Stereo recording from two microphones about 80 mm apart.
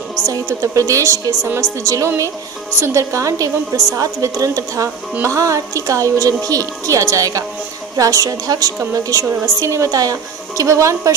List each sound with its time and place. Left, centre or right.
0.3 s a woman's voice: right